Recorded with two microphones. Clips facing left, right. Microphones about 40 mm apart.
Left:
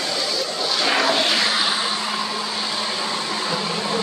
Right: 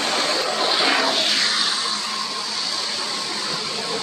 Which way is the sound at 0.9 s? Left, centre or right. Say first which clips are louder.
Left 2 dB; centre.